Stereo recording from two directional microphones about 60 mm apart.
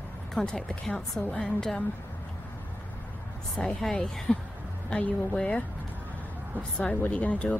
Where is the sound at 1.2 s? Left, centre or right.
Left.